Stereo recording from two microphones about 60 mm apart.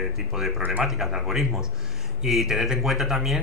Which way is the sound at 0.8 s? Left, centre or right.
Centre.